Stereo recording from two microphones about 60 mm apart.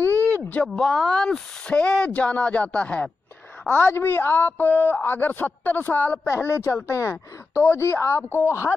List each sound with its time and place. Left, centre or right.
0.0 s a sound: right
0.7 s speech: centre
3.6 s a woman's voice: left
6.2 s a woman's voice: left